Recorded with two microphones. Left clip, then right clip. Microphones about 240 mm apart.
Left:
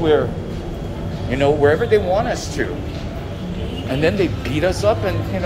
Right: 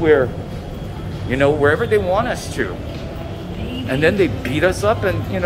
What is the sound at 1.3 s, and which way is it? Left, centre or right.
Speech, centre.